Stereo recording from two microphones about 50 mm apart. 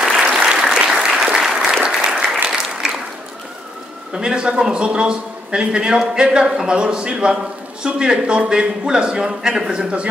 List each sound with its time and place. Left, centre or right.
0.2 s applause: centre
4.1 s a man's voice: centre